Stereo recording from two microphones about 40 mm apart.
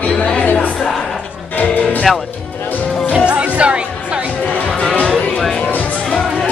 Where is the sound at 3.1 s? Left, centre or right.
Right.